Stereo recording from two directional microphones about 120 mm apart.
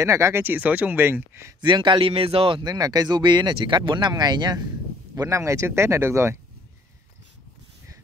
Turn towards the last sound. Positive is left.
turn(degrees=-20)  # may be behind; listen again after turning